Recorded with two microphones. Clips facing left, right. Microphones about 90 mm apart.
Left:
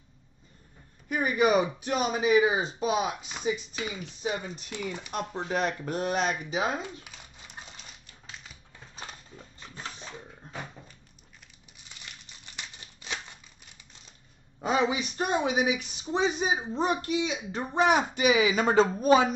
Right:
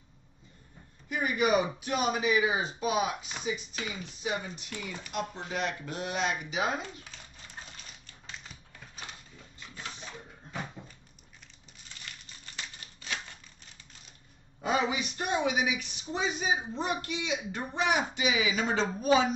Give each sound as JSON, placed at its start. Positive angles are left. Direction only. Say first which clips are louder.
{"t": 1.0, "sound": "speech", "louder": "left 4 dB", "side_deg": 40}
{"t": 4.7, "sound": "speech", "louder": "left 6 dB", "side_deg": 20}
{"t": 5.1, "sound": "speech", "louder": "left 3 dB", "side_deg": 45}
{"t": 6.8, "sound": "a sound", "louder": "left 2 dB", "side_deg": 15}
{"t": 12.8, "sound": "a sound", "louder": "left 1 dB", "side_deg": 20}
{"t": 14.7, "sound": "speech", "louder": "left 3 dB", "side_deg": 30}